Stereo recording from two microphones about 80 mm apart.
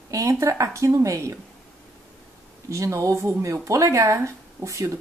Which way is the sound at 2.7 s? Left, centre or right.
Right.